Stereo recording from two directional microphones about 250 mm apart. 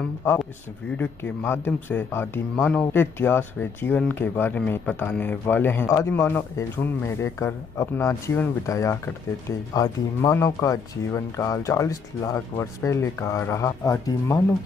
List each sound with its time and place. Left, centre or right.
0.2 s speech: centre